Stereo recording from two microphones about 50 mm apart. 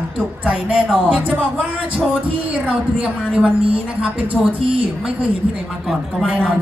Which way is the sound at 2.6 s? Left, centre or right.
Right.